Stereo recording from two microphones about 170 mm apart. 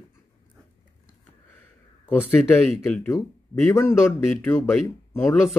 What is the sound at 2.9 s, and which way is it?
Speech, 10° left (ahead or behind).